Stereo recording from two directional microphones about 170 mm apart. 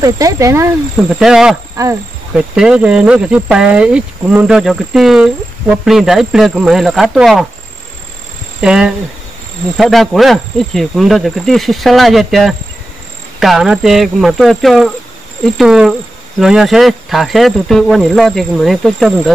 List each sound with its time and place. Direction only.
0.0 s speech: 20° right (ahead or behind)
1.2 s speech: 5° right (ahead or behind)
8.5 s speech: 5° right (ahead or behind)